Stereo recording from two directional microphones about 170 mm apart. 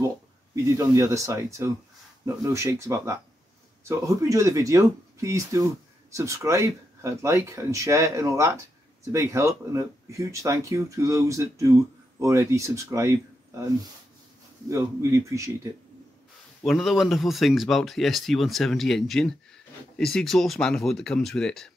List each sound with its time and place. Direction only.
0.7 s speech: 15° right (ahead or behind)
14.7 s speech: 15° right (ahead or behind)
16.6 s speech: centre (ahead or behind)